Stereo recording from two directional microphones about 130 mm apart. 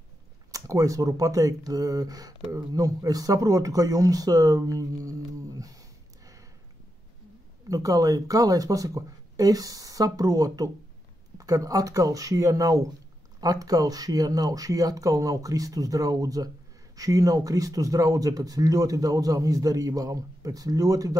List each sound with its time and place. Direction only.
0.5 s speech: 25° right (ahead or behind)
7.7 s speech: 25° right (ahead or behind)